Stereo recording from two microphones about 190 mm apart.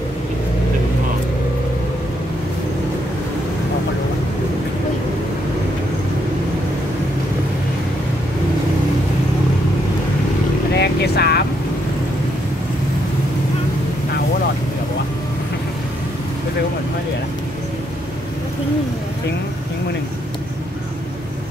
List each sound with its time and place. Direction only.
10.7 s boat: 60° left (ahead or behind)